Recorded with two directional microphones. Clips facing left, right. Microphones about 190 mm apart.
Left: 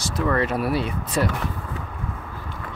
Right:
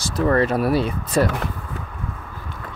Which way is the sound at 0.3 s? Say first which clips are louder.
Right 4 dB; 35° right (ahead or behind).